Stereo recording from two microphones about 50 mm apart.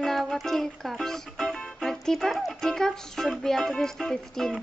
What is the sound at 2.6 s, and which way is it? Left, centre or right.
Music, centre.